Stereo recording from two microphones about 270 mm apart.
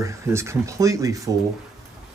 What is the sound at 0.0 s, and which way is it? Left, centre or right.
Speech, centre.